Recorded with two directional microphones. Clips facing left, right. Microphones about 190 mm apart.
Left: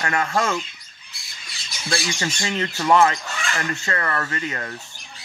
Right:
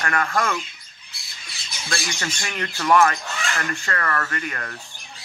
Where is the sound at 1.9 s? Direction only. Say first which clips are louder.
Left 3 dB; 15° left (ahead or behind).